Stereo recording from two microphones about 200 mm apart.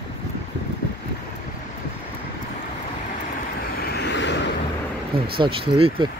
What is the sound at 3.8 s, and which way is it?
Vehicle, 55° left (ahead or behind).